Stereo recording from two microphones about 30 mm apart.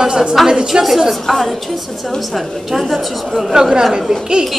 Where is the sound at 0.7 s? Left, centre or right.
Right.